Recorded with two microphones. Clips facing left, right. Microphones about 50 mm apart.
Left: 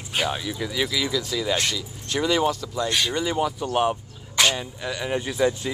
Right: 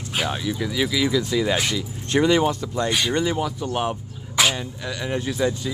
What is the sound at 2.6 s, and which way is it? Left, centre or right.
Speech, right.